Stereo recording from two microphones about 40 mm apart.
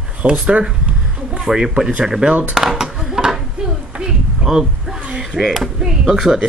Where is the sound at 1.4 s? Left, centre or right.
Centre.